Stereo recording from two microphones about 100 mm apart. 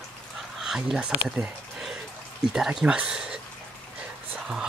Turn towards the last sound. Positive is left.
turn(degrees=-10)  # may be behind; listen again after turning